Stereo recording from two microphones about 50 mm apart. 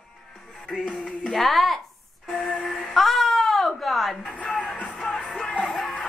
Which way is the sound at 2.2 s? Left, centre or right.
Centre.